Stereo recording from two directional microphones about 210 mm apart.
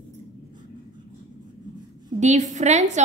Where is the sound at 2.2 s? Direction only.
35° right (ahead or behind).